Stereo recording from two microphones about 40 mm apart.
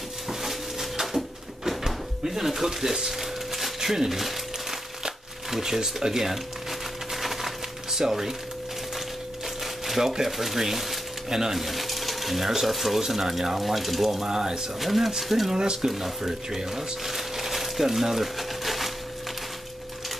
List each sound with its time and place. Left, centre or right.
0.3 s a sound: centre
8.0 s speech: centre
9.8 s speech: centre
11.5 s speech: centre
14.8 s speech: centre
15.5 s speech: centre
16.2 s crumpling: centre